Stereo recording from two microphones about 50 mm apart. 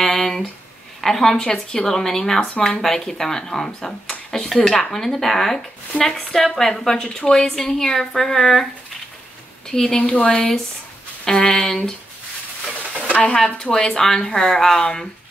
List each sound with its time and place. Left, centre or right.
0.0 s a sound: centre
1.0 s speech: centre
9.7 s speech: centre
10.1 s speech: left
11.2 s speech: centre
13.2 s speech: centre